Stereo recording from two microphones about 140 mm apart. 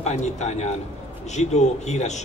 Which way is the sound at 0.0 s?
55° left (ahead or behind).